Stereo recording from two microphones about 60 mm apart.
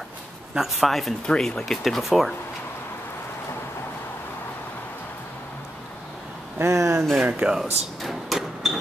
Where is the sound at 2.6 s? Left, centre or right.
Left.